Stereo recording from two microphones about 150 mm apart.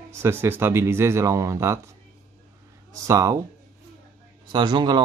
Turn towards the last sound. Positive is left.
turn(degrees=-30)  # may be behind; listen again after turning